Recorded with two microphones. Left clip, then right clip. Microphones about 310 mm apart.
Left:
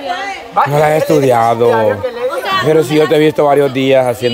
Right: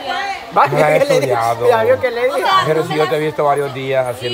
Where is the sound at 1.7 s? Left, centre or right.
Right.